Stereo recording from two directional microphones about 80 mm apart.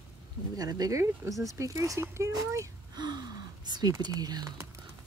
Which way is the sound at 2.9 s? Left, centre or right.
Right.